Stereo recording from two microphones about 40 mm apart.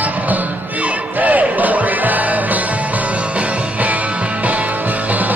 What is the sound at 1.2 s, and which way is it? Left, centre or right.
Basketball bounce, right.